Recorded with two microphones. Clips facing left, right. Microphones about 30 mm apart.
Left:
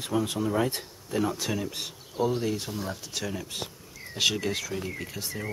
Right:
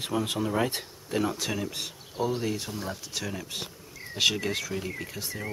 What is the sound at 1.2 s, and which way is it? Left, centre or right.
Speech, centre.